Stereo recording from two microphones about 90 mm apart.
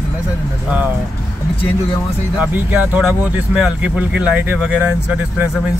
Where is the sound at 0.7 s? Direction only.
20° right (ahead or behind).